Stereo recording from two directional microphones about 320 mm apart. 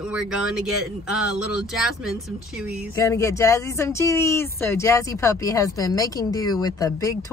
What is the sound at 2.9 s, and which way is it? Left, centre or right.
Speech, centre.